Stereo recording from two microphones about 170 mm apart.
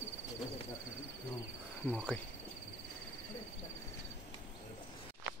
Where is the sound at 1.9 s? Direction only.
5° left (ahead or behind).